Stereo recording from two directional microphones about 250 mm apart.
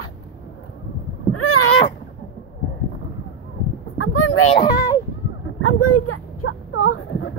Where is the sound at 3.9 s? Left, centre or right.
Left.